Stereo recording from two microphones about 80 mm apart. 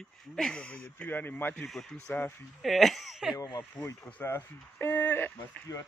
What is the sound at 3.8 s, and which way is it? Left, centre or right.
Speech, left.